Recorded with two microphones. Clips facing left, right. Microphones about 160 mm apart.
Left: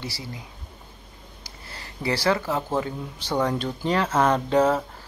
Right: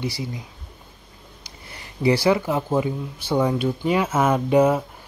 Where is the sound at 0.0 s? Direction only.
20° right (ahead or behind).